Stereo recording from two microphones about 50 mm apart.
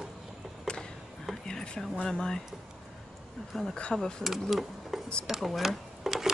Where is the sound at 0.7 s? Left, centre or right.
Centre.